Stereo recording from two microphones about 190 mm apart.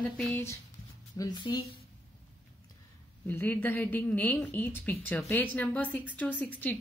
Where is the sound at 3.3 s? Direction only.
10° left (ahead or behind).